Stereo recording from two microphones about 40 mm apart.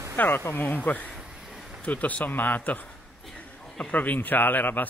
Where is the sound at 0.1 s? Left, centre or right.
Left.